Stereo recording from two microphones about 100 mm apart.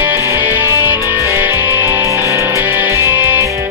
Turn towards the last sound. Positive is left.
turn(degrees=-25)  # may be behind; listen again after turning